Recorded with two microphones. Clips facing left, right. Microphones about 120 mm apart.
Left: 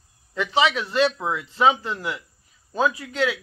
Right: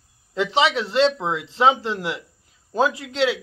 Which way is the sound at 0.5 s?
25° right (ahead or behind).